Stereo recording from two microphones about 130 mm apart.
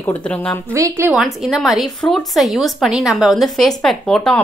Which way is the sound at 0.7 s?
20° right (ahead or behind).